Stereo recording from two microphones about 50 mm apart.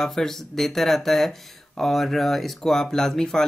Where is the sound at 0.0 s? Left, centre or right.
Centre.